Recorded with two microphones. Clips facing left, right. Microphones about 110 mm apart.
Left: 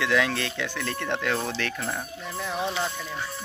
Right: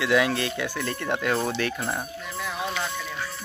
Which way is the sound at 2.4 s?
25° left (ahead or behind).